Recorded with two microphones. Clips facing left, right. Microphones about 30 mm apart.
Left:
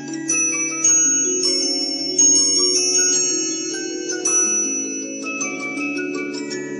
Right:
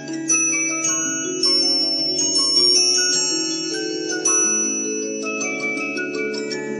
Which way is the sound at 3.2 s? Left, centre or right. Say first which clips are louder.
Even; right.